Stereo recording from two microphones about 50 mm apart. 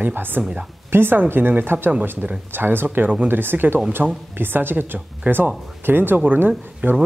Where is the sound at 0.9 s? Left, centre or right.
Right.